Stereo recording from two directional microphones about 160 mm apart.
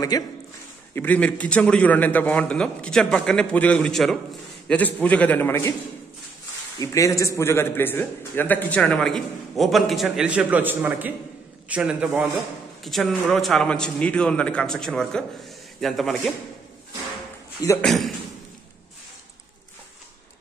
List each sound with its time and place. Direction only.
0.1 s a man's voice: 25° left (ahead or behind)
0.9 s a man's voice: 10° left (ahead or behind)
6.8 s a man's voice: 20° left (ahead or behind); by 16.3 s centre (ahead or behind)
17.8 s a man's voice: centre (ahead or behind)